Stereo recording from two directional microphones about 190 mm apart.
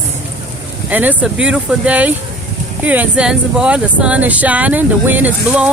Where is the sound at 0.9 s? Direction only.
10° right (ahead or behind).